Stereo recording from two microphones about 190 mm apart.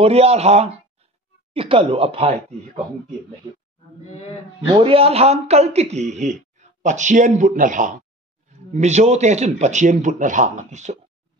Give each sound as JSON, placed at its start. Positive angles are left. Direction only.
{"t": 0.0, "sound": "a man's voice", "side_deg": -30}
{"t": 4.7, "sound": "a man's voice", "side_deg": -30}